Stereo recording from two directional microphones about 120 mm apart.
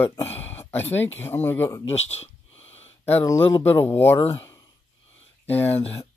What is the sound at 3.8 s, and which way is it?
Speech, 20° left (ahead or behind).